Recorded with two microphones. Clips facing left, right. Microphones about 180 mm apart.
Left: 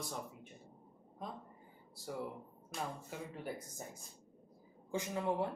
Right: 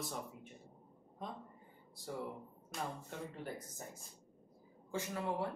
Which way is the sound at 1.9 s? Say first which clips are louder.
Left 1 dB; centre (ahead or behind).